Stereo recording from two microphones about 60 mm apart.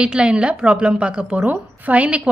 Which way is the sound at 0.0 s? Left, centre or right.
Centre.